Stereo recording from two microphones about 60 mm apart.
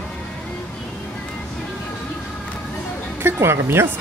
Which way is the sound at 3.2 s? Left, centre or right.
Right.